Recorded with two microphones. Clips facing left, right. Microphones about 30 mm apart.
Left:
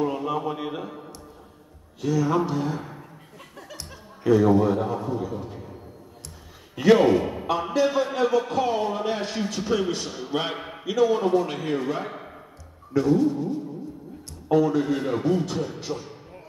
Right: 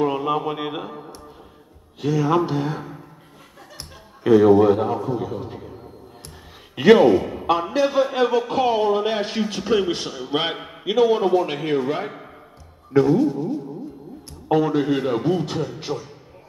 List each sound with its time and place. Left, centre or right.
0.0 s a man's voice: right
4.3 s a man's voice: right
5.2 s a man's voice: right
6.7 s a sound: right
7.2 s a sound: centre
7.7 s a man's voice: right
13.0 s speech: centre
14.5 s a man's voice: right